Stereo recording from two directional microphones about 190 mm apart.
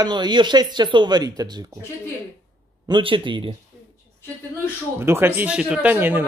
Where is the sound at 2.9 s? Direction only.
25° right (ahead or behind).